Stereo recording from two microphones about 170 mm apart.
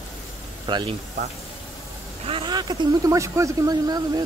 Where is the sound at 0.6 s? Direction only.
25° right (ahead or behind).